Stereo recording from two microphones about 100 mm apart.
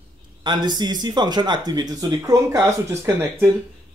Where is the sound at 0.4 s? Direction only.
50° right (ahead or behind).